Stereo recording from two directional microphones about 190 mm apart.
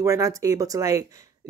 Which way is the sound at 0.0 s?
15° right (ahead or behind).